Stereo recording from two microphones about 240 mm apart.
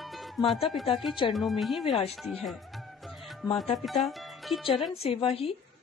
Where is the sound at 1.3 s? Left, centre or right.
Centre.